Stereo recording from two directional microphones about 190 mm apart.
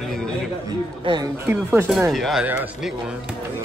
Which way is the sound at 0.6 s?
20° right (ahead or behind).